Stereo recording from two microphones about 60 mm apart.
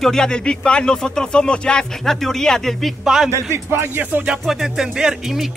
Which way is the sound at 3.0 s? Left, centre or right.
Centre.